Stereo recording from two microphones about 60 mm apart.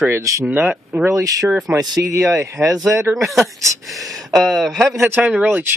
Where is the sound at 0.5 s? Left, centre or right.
Right.